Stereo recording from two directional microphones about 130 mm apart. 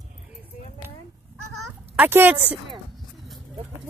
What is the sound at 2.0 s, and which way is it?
Speech, 15° right (ahead or behind).